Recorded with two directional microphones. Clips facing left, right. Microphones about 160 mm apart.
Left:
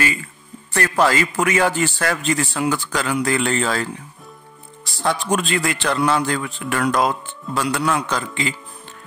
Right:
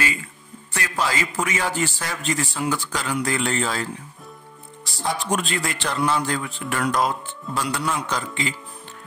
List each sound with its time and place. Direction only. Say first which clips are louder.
0.7 s a man's voice: left 7 dB; 60° left (ahead or behind)
5.0 s a man's voice: left 4 dB; 90° left